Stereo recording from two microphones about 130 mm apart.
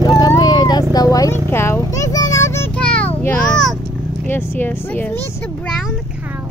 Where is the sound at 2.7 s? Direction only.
10° left (ahead or behind).